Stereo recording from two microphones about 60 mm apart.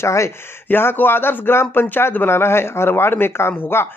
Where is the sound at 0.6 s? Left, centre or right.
Left.